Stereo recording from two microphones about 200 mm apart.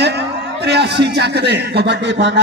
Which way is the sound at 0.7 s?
55° right (ahead or behind).